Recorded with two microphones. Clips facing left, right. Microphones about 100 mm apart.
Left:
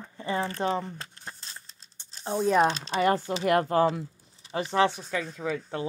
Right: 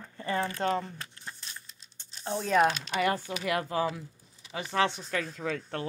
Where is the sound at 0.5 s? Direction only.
25° left (ahead or behind).